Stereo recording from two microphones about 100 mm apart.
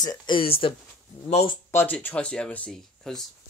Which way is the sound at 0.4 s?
65° left (ahead or behind).